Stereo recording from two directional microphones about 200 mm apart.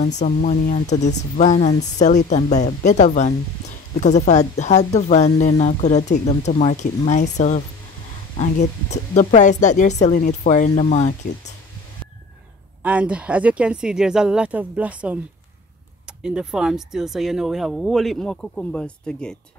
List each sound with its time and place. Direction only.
0.2 s speech: 35° left (ahead or behind)
12.8 s speech: 5° right (ahead or behind)
16.2 s speech: 5° right (ahead or behind)